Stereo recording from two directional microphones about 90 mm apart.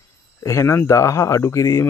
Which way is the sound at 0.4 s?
35° left (ahead or behind).